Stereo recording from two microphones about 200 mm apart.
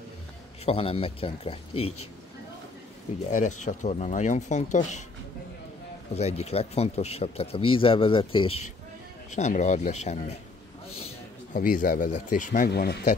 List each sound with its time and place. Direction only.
0.7 s speech: 30° left (ahead or behind)
1.8 s speech: 90° left
3.3 s speech: 35° left (ahead or behind)
6.1 s speech: 30° left (ahead or behind)
11.5 s speech: 40° left (ahead or behind)